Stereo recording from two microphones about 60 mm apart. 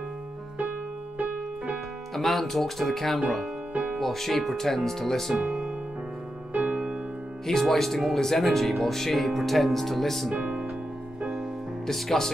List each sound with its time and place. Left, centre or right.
2.1 s speech: centre
6.5 s music: right
7.4 s speech: centre
10.3 s music: right
11.8 s speech: centre